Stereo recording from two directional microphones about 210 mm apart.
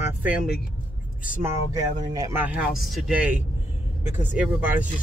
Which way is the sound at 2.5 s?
5° right (ahead or behind).